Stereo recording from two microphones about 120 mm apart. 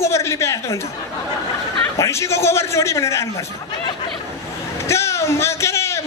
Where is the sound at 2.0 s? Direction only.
25° left (ahead or behind).